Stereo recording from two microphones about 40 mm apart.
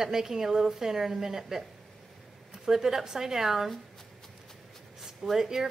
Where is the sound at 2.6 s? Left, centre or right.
Centre.